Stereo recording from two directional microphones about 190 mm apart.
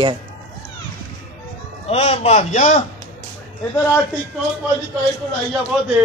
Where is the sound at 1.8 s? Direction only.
35° left (ahead or behind).